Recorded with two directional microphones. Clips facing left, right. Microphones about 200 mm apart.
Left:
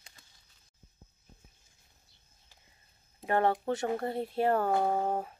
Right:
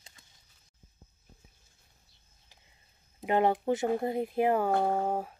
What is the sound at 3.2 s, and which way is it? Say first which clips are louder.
Speech: right 2 dB; 15° right (ahead or behind).